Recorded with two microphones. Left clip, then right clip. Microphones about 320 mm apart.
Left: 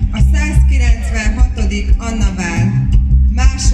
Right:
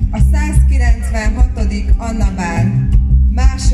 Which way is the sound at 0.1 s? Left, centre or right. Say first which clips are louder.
Left 1 dB; right.